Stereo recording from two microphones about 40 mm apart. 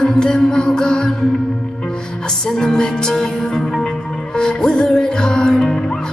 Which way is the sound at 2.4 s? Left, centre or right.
Centre.